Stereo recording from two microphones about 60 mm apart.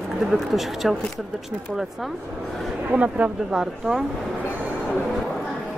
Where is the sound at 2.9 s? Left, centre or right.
Right.